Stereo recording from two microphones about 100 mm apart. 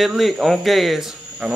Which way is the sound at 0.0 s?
Centre (ahead or behind).